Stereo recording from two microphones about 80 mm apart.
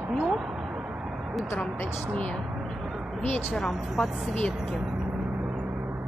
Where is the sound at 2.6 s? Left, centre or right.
Centre.